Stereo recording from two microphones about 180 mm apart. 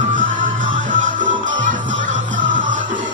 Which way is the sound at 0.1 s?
45° right (ahead or behind).